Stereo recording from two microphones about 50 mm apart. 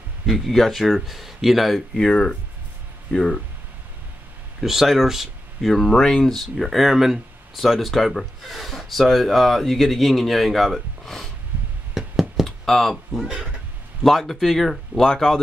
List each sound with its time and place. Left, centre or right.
0.3 s speech: centre
2.0 s speech: centre
4.6 s speech: centre
5.9 s speech: centre
12.4 s speech: centre